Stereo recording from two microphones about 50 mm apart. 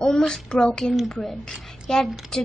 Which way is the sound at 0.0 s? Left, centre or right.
Centre.